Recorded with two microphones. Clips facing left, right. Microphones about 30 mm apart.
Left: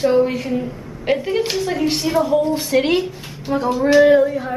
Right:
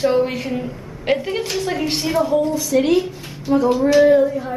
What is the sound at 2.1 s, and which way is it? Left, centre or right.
Speech, centre.